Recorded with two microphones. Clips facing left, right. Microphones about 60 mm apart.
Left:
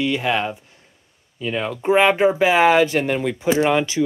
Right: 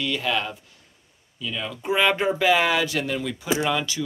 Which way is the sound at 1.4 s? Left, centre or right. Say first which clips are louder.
Left 7 dB; left.